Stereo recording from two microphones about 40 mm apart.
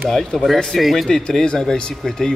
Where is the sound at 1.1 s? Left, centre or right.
Centre.